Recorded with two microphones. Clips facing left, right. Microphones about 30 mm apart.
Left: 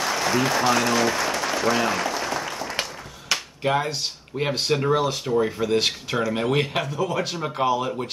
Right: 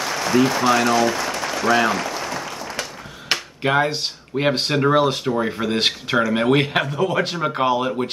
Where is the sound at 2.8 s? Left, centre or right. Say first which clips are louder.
Left 1 dB; left.